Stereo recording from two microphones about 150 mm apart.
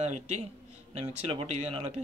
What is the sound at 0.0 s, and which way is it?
Speech, 45° right (ahead or behind).